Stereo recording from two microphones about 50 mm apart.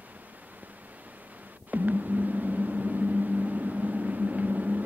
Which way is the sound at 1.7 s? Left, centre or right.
Right.